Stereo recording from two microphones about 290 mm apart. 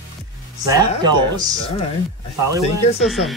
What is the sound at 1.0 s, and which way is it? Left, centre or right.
Speech, centre.